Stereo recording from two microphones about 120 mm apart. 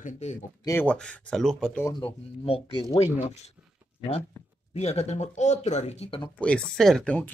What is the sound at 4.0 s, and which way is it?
Speech, 55° left (ahead or behind).